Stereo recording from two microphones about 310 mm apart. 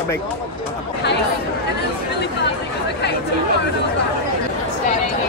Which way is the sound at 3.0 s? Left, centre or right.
Left.